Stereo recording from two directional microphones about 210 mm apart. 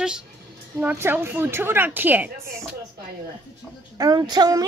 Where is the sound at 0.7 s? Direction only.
10° right (ahead or behind).